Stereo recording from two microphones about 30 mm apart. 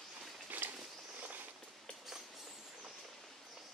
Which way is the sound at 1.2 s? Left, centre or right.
Right.